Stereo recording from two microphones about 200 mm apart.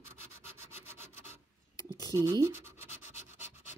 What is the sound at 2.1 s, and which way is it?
Speech, 15° right (ahead or behind).